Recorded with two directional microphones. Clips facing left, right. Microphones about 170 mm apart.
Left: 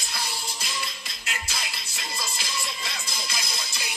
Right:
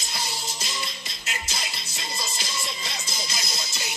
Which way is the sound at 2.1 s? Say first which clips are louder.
Even; 20° right (ahead or behind).